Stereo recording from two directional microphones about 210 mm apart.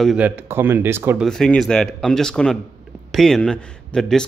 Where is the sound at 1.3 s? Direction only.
Centre (ahead or behind).